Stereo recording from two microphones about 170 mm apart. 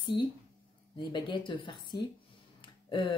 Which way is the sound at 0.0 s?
25° left (ahead or behind).